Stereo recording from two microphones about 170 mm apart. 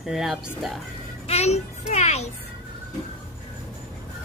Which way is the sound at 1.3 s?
40° left (ahead or behind).